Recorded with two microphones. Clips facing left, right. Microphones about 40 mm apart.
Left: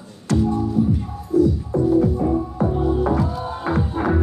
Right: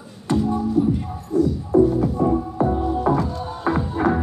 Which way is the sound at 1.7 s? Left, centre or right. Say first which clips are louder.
Right 8 dB; right.